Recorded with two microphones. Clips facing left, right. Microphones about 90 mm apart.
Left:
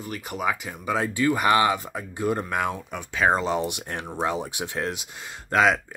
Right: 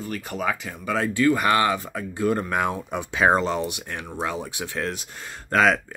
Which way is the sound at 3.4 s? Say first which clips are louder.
Even; 15° left (ahead or behind).